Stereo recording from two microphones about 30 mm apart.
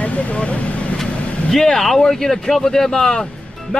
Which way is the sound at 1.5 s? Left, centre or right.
Centre.